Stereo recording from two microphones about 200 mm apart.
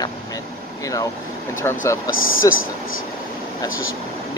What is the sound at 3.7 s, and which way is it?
Speech, 80° left.